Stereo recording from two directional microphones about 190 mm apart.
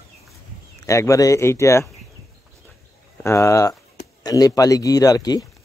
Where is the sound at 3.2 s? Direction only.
15° left (ahead or behind).